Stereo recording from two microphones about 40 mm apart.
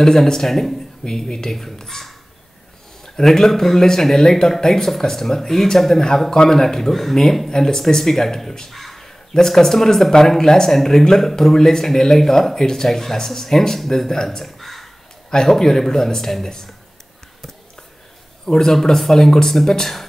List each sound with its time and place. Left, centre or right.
0.0 s speech: centre
3.2 s speech: centre
18.4 s speech: centre